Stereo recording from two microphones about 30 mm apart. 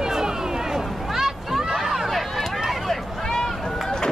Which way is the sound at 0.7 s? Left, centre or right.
Centre.